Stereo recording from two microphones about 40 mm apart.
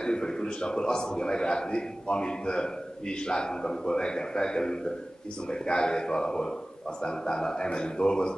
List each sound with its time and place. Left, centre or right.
0.0 s a man's voice: centre